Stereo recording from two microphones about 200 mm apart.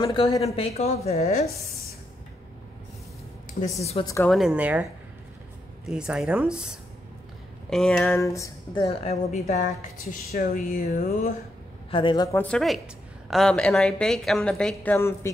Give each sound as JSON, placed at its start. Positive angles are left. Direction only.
{"t": 0.0, "sound": "a woman's voice", "side_deg": 20}
{"t": 4.0, "sound": "speech", "side_deg": 15}
{"t": 4.3, "sound": "a woman's voice", "side_deg": 0}
{"t": 5.9, "sound": "a woman's voice", "side_deg": -5}
{"t": 9.0, "sound": "a woman's voice", "side_deg": 35}
{"t": 10.3, "sound": "a woman's voice", "side_deg": 45}
{"t": 11.9, "sound": "a woman's voice", "side_deg": 25}
{"t": 12.4, "sound": "a woman's voice", "side_deg": 5}